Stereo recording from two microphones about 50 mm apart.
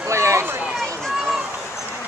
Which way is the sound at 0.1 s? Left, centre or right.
Right.